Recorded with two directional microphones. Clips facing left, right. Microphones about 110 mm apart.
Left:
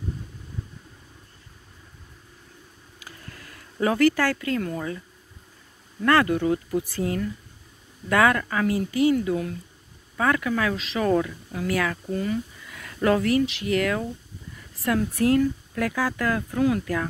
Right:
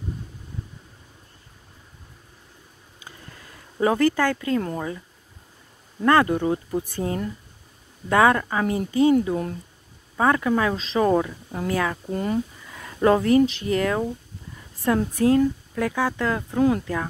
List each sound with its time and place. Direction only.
3.0 s a sound: 25° right (ahead or behind)
5.9 s speech: 20° right (ahead or behind)
12.1 s speech: 40° right (ahead or behind)
12.7 s speech: 20° right (ahead or behind)